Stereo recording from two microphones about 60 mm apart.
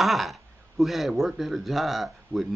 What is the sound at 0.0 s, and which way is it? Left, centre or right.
Speech, centre.